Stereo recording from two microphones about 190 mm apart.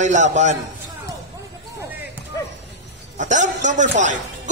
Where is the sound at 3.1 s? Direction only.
40° right (ahead or behind).